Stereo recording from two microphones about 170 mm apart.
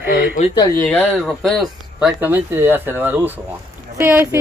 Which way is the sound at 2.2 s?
10° right (ahead or behind).